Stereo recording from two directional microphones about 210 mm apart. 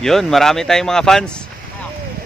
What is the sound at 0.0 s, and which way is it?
Speech, centre (ahead or behind).